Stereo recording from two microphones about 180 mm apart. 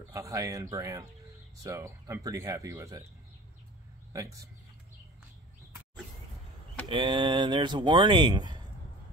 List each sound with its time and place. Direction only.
0.1 s speech: 15° right (ahead or behind)
6.9 s speech: 25° right (ahead or behind)